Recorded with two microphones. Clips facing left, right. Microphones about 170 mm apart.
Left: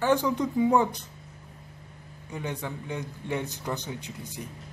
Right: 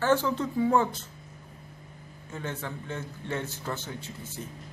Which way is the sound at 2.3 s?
15° left (ahead or behind).